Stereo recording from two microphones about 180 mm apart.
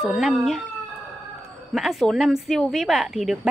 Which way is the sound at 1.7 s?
Centre (ahead or behind).